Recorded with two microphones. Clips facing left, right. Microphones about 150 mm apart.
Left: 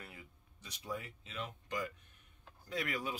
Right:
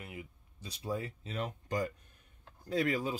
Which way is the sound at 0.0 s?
20° right (ahead or behind).